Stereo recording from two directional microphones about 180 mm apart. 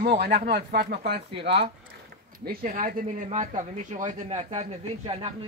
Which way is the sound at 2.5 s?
50° right (ahead or behind).